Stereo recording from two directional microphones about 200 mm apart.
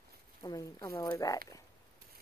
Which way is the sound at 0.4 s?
20° left (ahead or behind).